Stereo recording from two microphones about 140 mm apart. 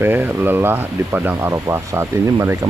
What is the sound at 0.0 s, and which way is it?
Speech, 15° right (ahead or behind).